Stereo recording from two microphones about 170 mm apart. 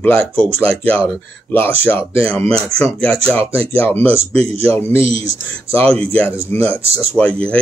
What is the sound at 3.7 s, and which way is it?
Speech, 10° left (ahead or behind).